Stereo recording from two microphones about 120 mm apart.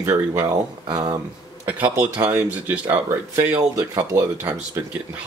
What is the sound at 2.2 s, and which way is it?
Speech, 20° right (ahead or behind).